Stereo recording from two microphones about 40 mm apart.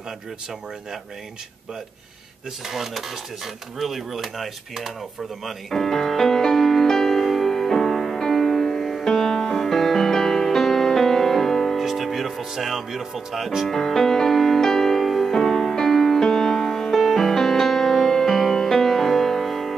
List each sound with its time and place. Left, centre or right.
2.7 s speech: centre
5.4 s music: centre
11.8 s music: centre
13.7 s music: centre